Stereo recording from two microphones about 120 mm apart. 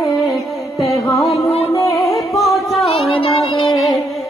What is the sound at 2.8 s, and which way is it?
Music, 50° left (ahead or behind).